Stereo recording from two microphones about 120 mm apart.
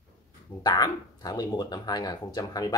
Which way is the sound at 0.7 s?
35° left (ahead or behind).